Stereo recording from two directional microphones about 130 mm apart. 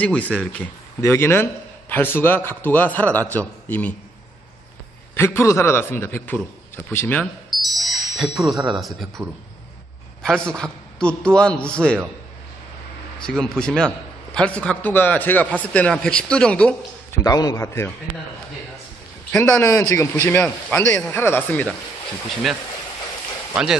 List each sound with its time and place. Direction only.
0.0 s a man's voice: 10° left (ahead or behind)
5.1 s a man's voice: 20° left (ahead or behind)
7.5 s wind chime: centre (ahead or behind)
8.7 s speech: centre (ahead or behind)
10.2 s a man's voice: 5° left (ahead or behind)
13.2 s a man's voice: 5° left (ahead or behind)
17.1 s a man's voice: 30° left (ahead or behind)
19.6 s a man's voice: 30° left (ahead or behind); by 21.7 s 10° left (ahead or behind)